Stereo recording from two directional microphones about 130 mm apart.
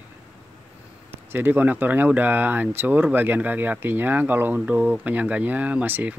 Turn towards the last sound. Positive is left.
turn(degrees=-15)  # may be behind; listen again after turning